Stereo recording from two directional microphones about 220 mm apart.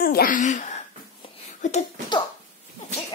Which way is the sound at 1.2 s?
30° left (ahead or behind).